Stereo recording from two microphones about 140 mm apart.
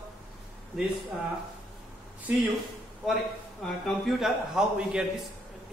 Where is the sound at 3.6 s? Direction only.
Centre (ahead or behind).